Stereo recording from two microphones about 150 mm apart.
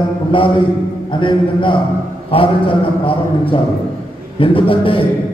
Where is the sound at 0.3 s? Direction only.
35° left (ahead or behind).